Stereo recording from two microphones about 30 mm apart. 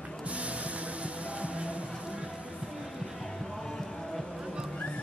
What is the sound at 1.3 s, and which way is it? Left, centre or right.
Music, right.